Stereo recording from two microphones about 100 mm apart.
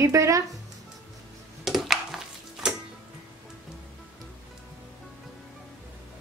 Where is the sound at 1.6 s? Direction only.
5° right (ahead or behind).